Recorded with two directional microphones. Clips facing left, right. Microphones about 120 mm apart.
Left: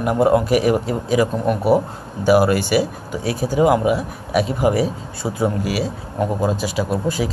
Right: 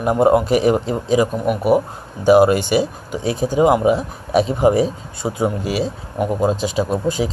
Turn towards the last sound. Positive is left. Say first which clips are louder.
# right 1 dB
turn(degrees=-20)  # may be behind; listen again after turning